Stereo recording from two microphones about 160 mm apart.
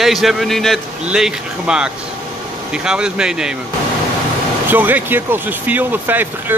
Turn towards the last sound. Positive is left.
turn(degrees=-10)  # may be behind; listen again after turning